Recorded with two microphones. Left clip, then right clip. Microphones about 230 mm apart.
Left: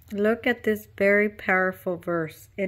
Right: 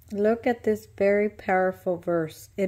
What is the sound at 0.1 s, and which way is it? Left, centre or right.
A woman's voice, centre.